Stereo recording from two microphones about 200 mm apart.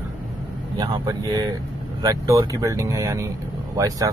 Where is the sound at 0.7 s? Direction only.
20° right (ahead or behind).